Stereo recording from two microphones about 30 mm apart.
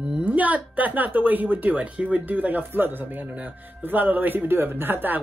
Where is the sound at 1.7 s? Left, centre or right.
Right.